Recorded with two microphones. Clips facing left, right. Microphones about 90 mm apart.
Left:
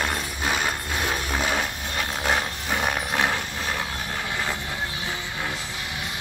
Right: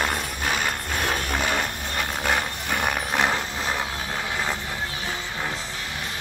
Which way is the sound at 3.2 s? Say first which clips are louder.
Right 2 dB; 20° right (ahead or behind).